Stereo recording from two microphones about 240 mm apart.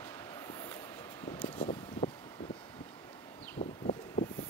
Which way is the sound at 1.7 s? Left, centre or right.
Left.